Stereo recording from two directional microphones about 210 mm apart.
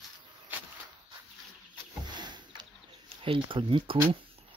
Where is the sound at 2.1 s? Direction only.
20° right (ahead or behind).